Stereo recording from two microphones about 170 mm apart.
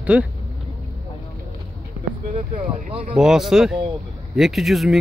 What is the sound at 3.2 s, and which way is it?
Speech, 5° right (ahead or behind).